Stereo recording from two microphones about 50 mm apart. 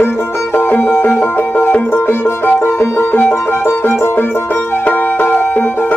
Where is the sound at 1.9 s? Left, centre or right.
Left.